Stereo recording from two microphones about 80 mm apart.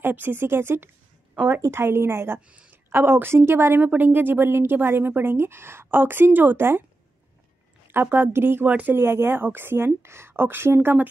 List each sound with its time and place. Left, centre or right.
0.0 s a woman's voice: right
1.6 s a woman's voice: right
2.5 s a sound: centre
2.9 s a woman's voice: right
7.9 s a woman's voice: right
8.6 s a woman's voice: centre
8.9 s a woman's voice: right